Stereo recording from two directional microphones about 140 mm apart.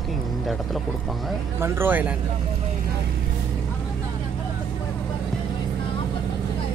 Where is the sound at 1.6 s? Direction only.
15° right (ahead or behind).